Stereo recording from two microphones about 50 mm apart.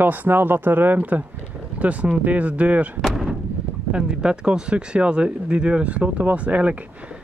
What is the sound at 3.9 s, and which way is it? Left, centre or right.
Speech, centre.